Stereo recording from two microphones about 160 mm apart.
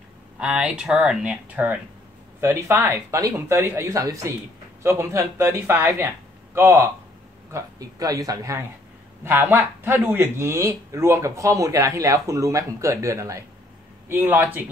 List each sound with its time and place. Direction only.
0.4 s speech: 5° right (ahead or behind)